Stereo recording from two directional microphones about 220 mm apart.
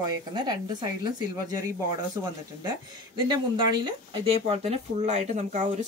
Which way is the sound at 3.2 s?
20° right (ahead or behind).